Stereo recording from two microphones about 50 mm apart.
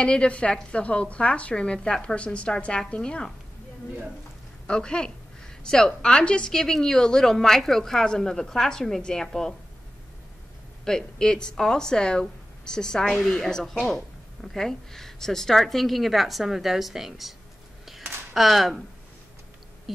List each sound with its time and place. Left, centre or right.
0.0 s speech: centre
4.6 s a woman's voice: centre
10.9 s a woman's voice: centre
17.8 s a sound: centre